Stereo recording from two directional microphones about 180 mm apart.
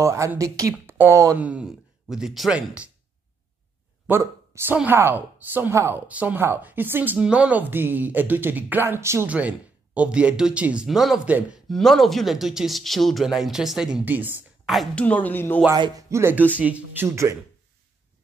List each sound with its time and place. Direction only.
0.0 s a woman's voice: 15° right (ahead or behind)
4.1 s a woman's voice: 10° right (ahead or behind)
14.8 s speech: 5° left (ahead or behind)
15.7 s a woman's voice: 20° right (ahead or behind)